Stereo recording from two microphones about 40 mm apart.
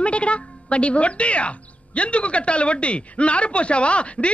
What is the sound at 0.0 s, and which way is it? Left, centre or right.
A woman's voice, left.